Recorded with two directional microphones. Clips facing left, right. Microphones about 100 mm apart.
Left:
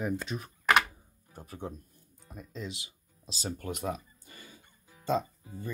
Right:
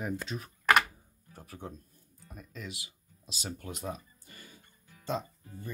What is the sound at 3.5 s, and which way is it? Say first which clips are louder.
Speech: left 6 dB; 50° left (ahead or behind).